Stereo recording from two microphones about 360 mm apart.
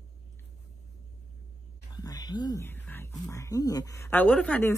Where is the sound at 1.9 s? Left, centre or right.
Centre.